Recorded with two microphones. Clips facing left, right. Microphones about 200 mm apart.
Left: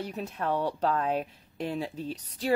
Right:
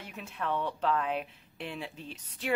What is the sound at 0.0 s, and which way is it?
Speech, 40° left (ahead or behind).